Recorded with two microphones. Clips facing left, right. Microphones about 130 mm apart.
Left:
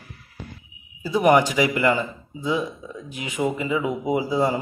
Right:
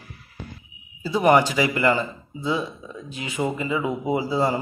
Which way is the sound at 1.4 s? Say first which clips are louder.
Left 1 dB; 15° left (ahead or behind).